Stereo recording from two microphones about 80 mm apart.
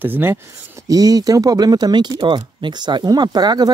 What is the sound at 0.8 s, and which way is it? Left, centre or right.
Speech, right.